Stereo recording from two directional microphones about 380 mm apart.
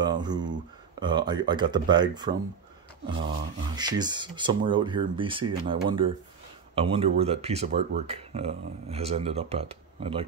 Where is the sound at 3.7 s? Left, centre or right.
Centre.